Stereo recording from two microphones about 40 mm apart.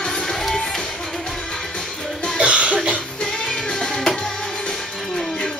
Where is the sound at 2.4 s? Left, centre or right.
Right.